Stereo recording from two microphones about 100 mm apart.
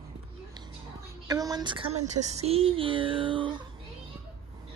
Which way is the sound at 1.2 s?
40° right (ahead or behind).